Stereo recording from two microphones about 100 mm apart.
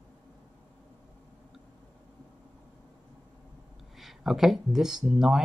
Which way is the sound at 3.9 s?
Centre (ahead or behind).